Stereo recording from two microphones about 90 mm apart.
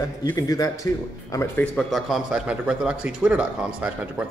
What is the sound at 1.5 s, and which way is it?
Speech, 15° left (ahead or behind).